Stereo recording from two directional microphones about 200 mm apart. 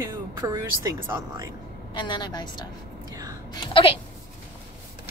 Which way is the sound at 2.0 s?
20° left (ahead or behind).